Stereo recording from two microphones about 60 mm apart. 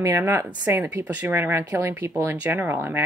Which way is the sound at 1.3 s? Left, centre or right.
Right.